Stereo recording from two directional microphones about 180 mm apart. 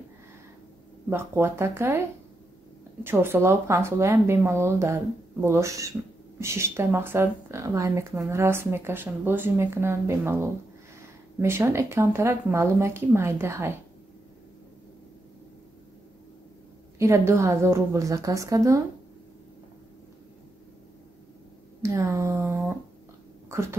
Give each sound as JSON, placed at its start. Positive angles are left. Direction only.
{"t": 1.1, "sound": "speech", "side_deg": -15}
{"t": 17.0, "sound": "speech", "side_deg": -15}
{"t": 21.8, "sound": "speech", "side_deg": -15}